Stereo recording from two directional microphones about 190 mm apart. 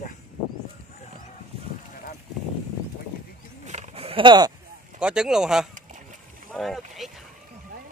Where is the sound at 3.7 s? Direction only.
35° right (ahead or behind).